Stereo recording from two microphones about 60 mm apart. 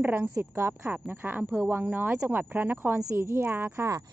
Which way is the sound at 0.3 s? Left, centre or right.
Right.